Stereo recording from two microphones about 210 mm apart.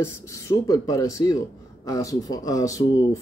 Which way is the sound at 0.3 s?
15° left (ahead or behind).